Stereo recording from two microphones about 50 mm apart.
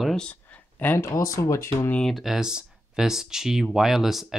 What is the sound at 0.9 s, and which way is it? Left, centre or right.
Speech, left.